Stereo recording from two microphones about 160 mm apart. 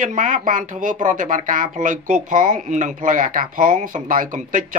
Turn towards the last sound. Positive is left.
turn(degrees=-55)  # may be behind; listen again after turning